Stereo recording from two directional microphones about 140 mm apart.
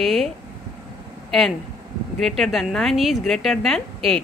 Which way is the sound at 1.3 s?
Centre (ahead or behind).